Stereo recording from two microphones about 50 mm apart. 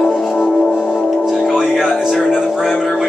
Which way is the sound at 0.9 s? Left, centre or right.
Centre.